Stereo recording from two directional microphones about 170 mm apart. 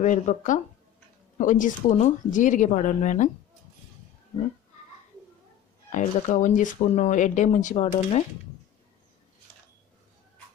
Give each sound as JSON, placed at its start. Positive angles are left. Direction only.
{"t": 0.0, "sound": "speech", "side_deg": 50}
{"t": 5.9, "sound": "speech", "side_deg": 45}